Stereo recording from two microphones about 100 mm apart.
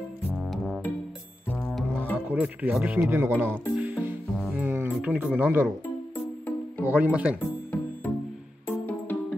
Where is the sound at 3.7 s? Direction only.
10° right (ahead or behind).